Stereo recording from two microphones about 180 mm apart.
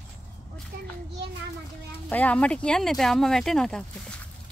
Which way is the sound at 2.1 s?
10° left (ahead or behind).